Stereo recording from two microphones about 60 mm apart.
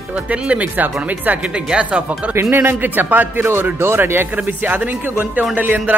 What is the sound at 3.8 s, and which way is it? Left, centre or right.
Speech, right.